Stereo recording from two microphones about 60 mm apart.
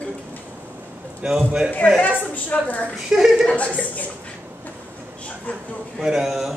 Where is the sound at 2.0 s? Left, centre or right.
Left.